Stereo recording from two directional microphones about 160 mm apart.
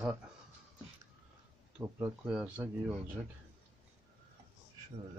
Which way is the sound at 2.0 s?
5° right (ahead or behind).